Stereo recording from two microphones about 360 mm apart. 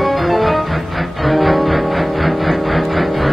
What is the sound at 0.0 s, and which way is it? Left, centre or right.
Music, centre.